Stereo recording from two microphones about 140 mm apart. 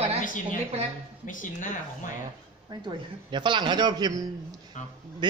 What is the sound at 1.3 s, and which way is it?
Speech, 70° left (ahead or behind).